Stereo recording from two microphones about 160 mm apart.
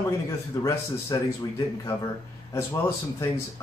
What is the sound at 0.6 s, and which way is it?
Speech, 20° left (ahead or behind).